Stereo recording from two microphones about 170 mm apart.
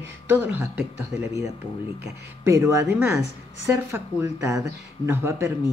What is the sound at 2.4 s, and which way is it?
Speech, 15° right (ahead or behind).